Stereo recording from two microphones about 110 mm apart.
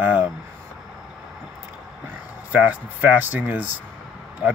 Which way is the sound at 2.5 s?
15° right (ahead or behind).